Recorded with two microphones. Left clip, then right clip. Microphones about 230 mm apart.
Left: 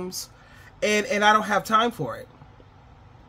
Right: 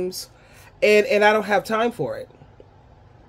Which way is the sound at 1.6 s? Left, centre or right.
Left.